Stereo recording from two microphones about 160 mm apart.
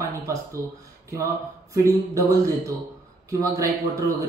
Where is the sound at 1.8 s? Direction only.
20° right (ahead or behind).